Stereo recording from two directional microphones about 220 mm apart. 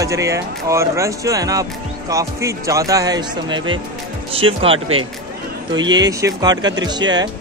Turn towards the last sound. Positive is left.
turn(degrees=-20)  # may be behind; listen again after turning